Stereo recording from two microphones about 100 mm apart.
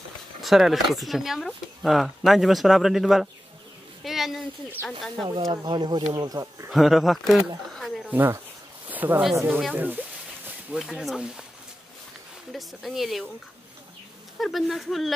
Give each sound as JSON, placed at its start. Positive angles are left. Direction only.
{"t": 0.4, "sound": "speech", "side_deg": 0}
{"t": 4.0, "sound": "a sound", "side_deg": 0}
{"t": 4.8, "sound": "speech", "side_deg": 25}
{"t": 5.5, "sound": "speech", "side_deg": -50}
{"t": 6.7, "sound": "speech", "side_deg": 0}
{"t": 8.1, "sound": "speech", "side_deg": -20}
{"t": 8.8, "sound": "a sound", "side_deg": -15}
{"t": 9.3, "sound": "speech", "side_deg": -25}
{"t": 9.8, "sound": "a sound", "side_deg": -20}
{"t": 10.8, "sound": "speech", "side_deg": 0}
{"t": 12.5, "sound": "speech", "side_deg": 0}
{"t": 14.4, "sound": "speech", "side_deg": 0}